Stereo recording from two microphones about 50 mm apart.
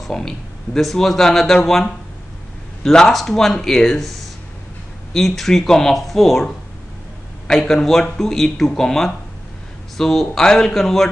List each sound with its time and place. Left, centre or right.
0.0 s speech: centre
7.4 s speech: centre